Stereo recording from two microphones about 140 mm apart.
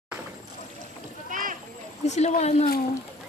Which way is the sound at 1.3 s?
70° right (ahead or behind).